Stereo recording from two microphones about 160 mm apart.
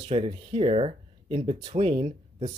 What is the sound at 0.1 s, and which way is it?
Speech, 35° right (ahead or behind).